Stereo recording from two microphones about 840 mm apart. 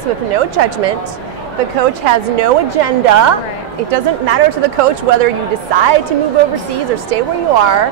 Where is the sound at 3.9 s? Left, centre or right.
Right.